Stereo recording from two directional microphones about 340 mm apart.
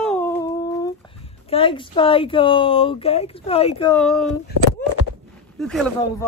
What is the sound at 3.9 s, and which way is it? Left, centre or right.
Speech, centre.